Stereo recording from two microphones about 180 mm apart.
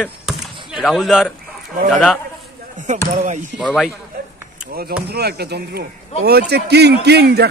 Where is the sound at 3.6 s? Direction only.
5° left (ahead or behind).